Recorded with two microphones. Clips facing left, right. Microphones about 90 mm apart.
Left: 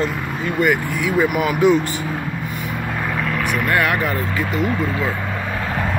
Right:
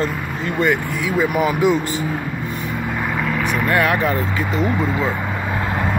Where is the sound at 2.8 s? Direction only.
5° right (ahead or behind).